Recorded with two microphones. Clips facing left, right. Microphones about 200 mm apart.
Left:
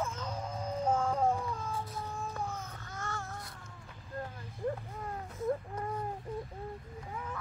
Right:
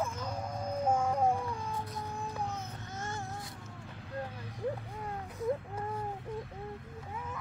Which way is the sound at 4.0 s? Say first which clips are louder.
Right 1 dB; 75° right (ahead or behind).